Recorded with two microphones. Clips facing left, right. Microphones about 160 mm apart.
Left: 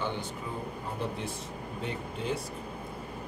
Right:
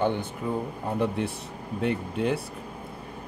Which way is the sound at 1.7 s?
65° right (ahead or behind).